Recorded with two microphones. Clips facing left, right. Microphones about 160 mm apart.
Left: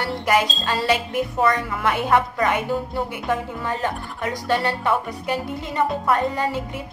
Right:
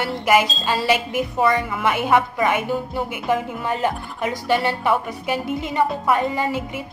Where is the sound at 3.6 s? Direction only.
20° right (ahead or behind).